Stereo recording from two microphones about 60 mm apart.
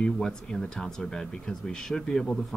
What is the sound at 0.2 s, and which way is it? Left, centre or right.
Speech, centre.